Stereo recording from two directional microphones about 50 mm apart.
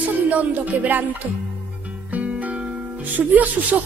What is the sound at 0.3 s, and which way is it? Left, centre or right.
Speech, right.